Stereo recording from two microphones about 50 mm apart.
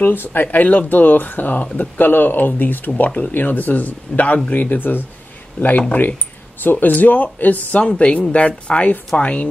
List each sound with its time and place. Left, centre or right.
0.0 s speech: left
7.8 s speech: left